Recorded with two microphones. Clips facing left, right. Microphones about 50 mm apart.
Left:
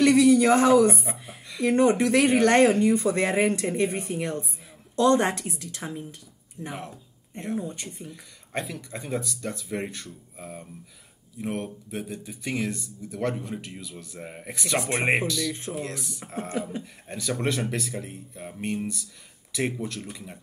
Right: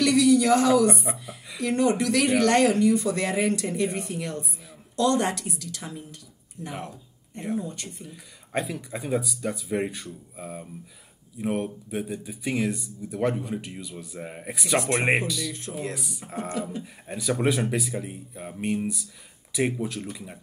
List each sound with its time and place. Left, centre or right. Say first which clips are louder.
0.0 s a sound: left 2 dB; left
1.6 s speech: left 3 dB; left
6.7 s speech: right 3 dB; centre
7.5 s speech: even; left
8.1 s speech: right 3 dB; centre
14.8 s speech: right 2 dB; centre
15.0 s speech: even; centre